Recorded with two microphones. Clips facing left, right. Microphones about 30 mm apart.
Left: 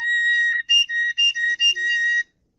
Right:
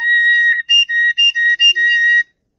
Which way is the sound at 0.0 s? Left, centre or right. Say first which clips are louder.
Right 7 dB; right.